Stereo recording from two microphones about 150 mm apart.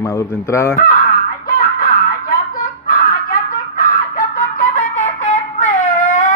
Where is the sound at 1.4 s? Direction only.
75° left (ahead or behind); by 6.3 s 55° left (ahead or behind).